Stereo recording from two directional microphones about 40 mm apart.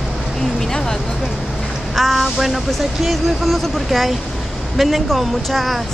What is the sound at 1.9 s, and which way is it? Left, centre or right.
Speech, centre.